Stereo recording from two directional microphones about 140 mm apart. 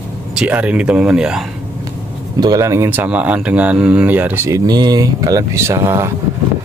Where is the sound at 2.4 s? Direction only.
25° right (ahead or behind).